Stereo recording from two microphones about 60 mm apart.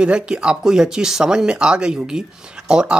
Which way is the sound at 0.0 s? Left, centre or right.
Centre.